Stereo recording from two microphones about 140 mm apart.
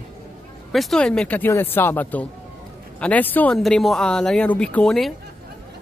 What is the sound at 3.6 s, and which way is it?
Speech, centre (ahead or behind).